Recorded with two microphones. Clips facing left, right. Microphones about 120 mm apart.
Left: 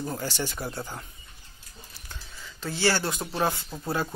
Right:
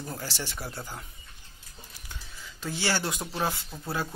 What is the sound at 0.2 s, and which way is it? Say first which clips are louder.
Speech: left 5 dB; centre (ahead or behind).